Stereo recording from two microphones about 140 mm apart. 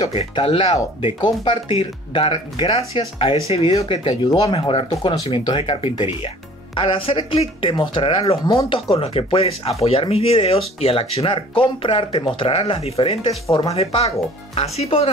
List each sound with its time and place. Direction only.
0.0 s speech: 45° left (ahead or behind)
8.9 s speech: 45° left (ahead or behind)